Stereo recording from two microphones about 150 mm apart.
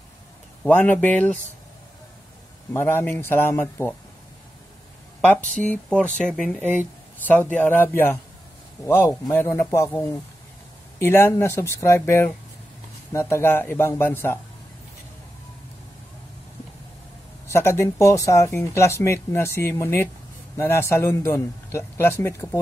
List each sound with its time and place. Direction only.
0.7 s a man's voice: 10° left (ahead or behind)
2.7 s a man's voice: 15° left (ahead or behind)
5.7 s a man's voice: 5° left (ahead or behind)
17.5 s a man's voice: 15° left (ahead or behind)